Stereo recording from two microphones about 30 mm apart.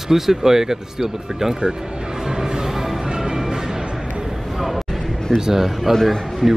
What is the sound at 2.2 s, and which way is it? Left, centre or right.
Music, right.